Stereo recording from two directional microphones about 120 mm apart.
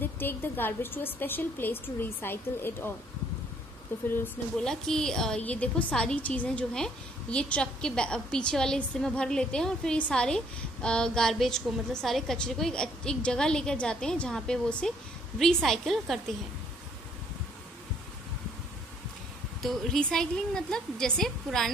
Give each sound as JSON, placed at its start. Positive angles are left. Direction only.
{"t": 0.0, "sound": "a woman's voice", "side_deg": 15}
{"t": 3.9, "sound": "a woman's voice", "side_deg": 15}
{"t": 4.6, "sound": "a woman's voice", "side_deg": 5}
{"t": 19.6, "sound": "a woman's voice", "side_deg": 5}